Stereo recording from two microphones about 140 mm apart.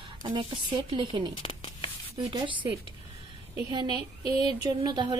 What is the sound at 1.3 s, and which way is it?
Speech, 40° left (ahead or behind).